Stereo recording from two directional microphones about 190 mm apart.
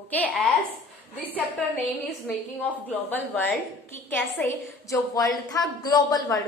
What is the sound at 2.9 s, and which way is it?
A woman's voice, 10° left (ahead or behind).